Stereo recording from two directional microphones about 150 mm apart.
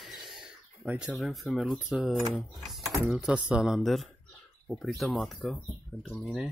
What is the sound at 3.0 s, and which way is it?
Speech, 5° right (ahead or behind).